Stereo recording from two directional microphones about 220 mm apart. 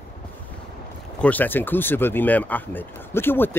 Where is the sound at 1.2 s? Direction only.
10° left (ahead or behind).